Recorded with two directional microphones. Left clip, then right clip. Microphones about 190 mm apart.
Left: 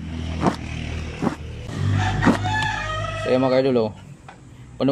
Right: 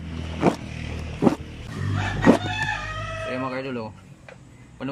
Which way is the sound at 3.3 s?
30° left (ahead or behind).